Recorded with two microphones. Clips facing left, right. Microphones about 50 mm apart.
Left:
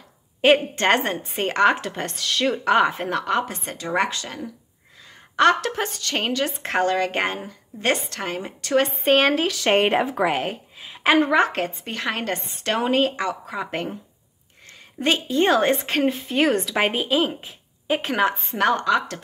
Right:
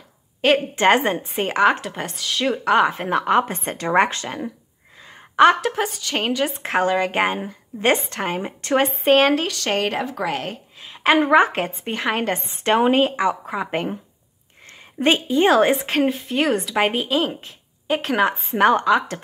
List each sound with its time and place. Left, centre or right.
0.4 s a woman's voice: centre
0.7 s a woman's voice: centre
3.1 s a woman's voice: centre
3.7 s speech: right
5.0 s a woman's voice: centre
7.3 s a woman's voice: centre
8.8 s a woman's voice: centre
9.7 s a woman's voice: left; by 11.1 s centre
11.1 s a woman's voice: centre
15.0 s a woman's voice: centre
15.4 s a woman's voice: centre
18.5 s a woman's voice: centre